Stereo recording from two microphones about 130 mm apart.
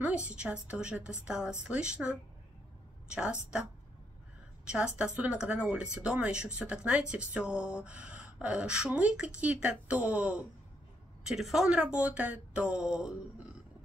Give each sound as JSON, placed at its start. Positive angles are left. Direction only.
{"t": 0.0, "sound": "a woman's voice", "side_deg": -10}
{"t": 4.6, "sound": "speech", "side_deg": -10}